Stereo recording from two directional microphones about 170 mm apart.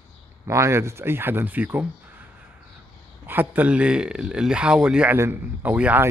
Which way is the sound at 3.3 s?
10° right (ahead or behind).